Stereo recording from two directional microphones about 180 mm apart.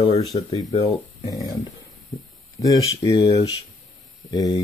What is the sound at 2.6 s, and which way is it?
Speech, 20° left (ahead or behind).